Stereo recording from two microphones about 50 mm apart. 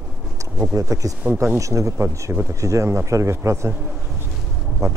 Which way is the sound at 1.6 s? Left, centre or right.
Right.